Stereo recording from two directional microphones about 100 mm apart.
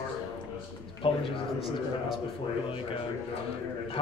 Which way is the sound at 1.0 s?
65° left (ahead or behind).